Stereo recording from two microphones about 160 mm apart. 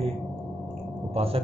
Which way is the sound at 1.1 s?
40° right (ahead or behind).